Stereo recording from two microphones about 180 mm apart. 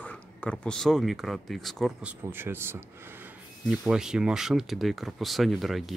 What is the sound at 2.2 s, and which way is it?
Speech, 10° right (ahead or behind).